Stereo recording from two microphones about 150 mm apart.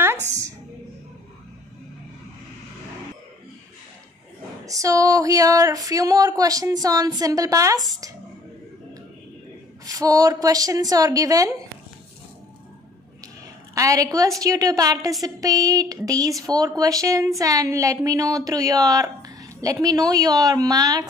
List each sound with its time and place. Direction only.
4.6 s a woman's voice: 20° right (ahead or behind)
9.8 s a woman's voice: 25° right (ahead or behind)
13.7 s a woman's voice: 20° right (ahead or behind)